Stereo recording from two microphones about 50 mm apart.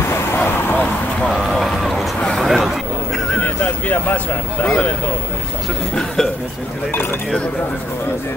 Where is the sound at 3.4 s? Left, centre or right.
Left.